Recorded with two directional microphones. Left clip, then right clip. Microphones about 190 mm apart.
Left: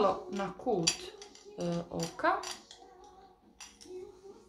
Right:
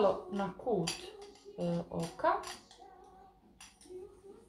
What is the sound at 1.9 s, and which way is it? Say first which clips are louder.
Speech: left 2 dB; 15° left (ahead or behind).